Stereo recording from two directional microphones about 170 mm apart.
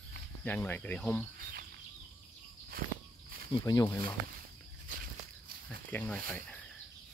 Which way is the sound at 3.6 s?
25° left (ahead or behind).